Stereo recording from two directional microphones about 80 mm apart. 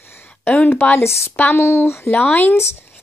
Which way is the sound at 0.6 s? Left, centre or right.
Left.